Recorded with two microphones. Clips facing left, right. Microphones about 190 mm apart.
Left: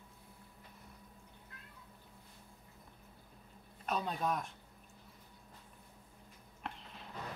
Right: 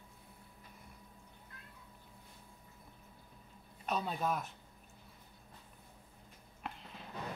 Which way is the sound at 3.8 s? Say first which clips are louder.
Even; 5° right (ahead or behind).